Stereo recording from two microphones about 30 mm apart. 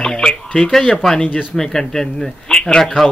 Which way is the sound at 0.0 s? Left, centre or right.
Left.